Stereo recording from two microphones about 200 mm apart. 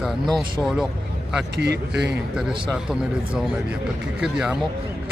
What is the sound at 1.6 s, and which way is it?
Speech, 55° right (ahead or behind).